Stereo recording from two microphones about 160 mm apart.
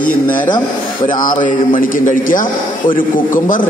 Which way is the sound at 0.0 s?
55° left (ahead or behind).